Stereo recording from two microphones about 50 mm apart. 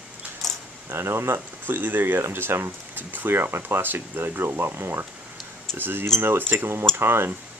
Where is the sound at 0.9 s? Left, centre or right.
Right.